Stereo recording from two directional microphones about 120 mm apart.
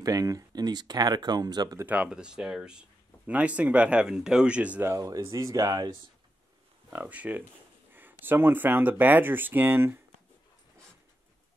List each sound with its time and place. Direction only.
0.0 s speech: 30° right (ahead or behind)
1.9 s speech: 10° right (ahead or behind)
4.9 s speech: 25° right (ahead or behind)
6.9 s speech: 15° right (ahead or behind)